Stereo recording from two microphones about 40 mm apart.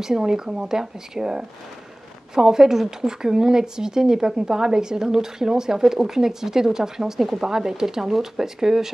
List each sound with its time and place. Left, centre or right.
0.0 s speech: centre